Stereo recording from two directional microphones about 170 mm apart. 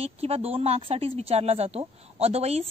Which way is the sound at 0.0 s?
35° right (ahead or behind).